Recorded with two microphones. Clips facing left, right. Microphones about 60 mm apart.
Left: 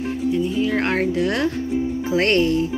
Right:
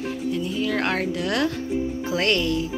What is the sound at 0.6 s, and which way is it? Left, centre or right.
Music, left.